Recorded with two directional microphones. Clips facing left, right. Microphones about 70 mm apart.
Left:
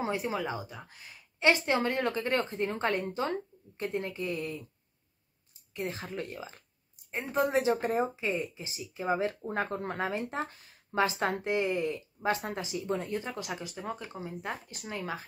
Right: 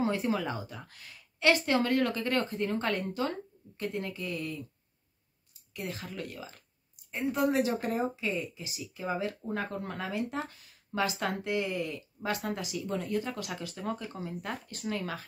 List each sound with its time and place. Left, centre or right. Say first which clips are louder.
0.0 s a woman's voice: right 2 dB; centre
5.7 s a woman's voice: left 3 dB; left